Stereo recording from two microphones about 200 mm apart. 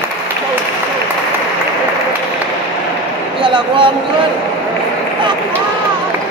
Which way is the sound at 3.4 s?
25° right (ahead or behind).